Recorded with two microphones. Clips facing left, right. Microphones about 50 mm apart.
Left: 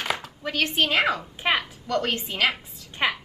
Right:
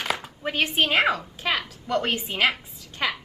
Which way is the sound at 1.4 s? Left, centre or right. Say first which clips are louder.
Left 2 dB; left.